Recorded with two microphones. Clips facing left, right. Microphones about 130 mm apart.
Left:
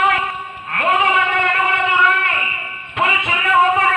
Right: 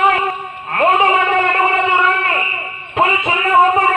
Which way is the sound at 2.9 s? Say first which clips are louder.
Right 4 dB; 35° right (ahead or behind).